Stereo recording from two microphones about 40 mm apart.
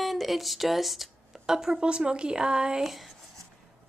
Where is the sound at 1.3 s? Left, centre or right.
Centre.